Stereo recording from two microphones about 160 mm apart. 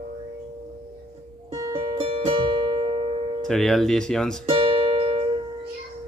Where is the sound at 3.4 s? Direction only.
5° left (ahead or behind).